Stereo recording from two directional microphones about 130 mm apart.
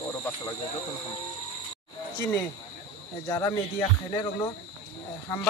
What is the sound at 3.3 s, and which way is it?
Speech, 20° left (ahead or behind).